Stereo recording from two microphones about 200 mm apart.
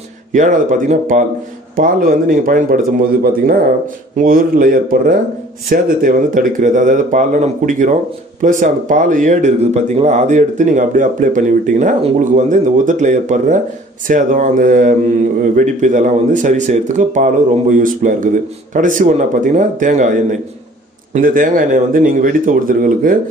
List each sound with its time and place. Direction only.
0.3 s speech: 40° right (ahead or behind)
4.2 s speech: 45° right (ahead or behind)